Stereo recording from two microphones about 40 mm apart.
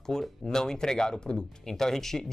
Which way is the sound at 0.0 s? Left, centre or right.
Centre.